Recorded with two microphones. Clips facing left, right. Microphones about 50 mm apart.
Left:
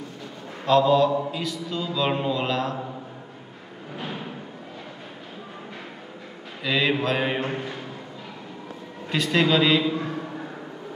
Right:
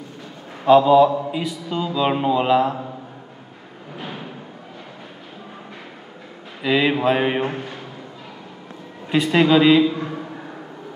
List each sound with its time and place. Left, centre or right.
0.7 s mantra: centre
1.3 s a sound: centre
1.9 s mantra: centre
6.6 s mantra: centre
7.4 s a man's voice: centre
9.1 s mantra: centre
9.8 s a sound: centre